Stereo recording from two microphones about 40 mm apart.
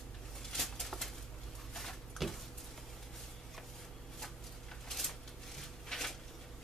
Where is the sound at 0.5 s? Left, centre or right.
Centre.